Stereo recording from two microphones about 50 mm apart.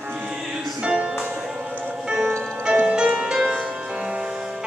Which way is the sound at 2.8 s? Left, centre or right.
Centre.